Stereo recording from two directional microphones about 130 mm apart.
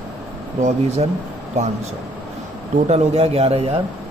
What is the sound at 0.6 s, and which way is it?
Speech, 60° right (ahead or behind).